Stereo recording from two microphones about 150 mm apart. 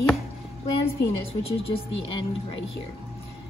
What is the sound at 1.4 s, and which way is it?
Speech, 40° left (ahead or behind).